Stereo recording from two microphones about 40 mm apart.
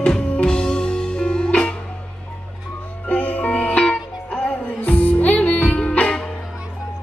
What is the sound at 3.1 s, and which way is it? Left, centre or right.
Music, left.